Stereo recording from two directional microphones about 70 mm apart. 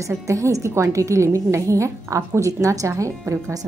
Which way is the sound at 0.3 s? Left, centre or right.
Right.